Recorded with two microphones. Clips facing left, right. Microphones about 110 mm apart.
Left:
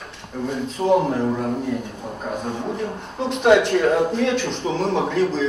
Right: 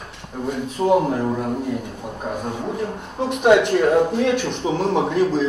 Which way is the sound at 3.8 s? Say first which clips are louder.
Right 2 dB; 15° right (ahead or behind).